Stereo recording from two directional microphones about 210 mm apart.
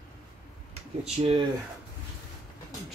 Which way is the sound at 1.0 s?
25° right (ahead or behind).